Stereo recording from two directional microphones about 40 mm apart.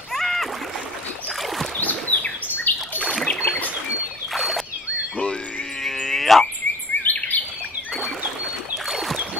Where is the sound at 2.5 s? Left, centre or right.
Left.